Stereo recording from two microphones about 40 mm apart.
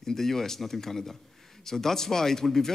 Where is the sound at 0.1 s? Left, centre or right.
Centre.